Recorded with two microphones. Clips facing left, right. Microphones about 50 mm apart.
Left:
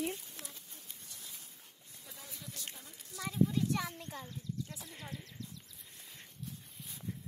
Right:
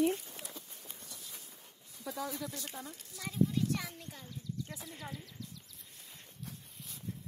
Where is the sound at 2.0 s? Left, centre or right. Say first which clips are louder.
Right 15 dB; right.